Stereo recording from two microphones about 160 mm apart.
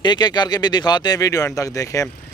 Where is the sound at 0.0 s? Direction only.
25° left (ahead or behind).